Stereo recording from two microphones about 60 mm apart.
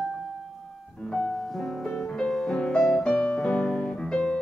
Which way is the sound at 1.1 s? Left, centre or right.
Centre.